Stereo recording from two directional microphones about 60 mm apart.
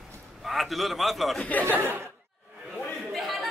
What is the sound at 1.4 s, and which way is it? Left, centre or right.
Speech, left.